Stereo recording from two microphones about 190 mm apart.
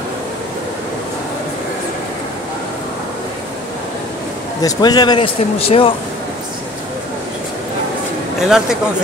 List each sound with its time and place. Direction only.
4.6 s speech: 20° left (ahead or behind)
8.4 s speech: centre (ahead or behind)